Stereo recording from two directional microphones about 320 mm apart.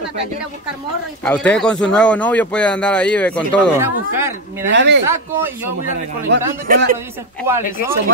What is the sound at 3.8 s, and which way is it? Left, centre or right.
Speech, centre.